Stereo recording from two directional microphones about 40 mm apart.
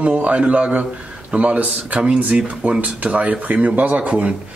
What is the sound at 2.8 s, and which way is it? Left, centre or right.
A man's voice, right.